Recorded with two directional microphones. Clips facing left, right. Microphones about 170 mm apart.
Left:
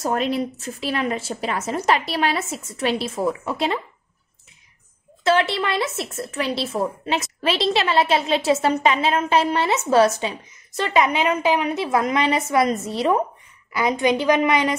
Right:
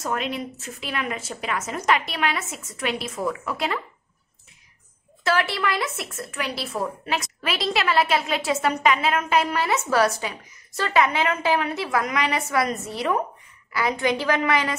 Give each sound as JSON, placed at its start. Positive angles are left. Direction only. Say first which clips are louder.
{"t": 0.0, "sound": "a woman's voice", "louder": "left 5 dB", "side_deg": 35}
{"t": 5.2, "sound": "a woman's voice", "louder": "left 4 dB", "side_deg": 25}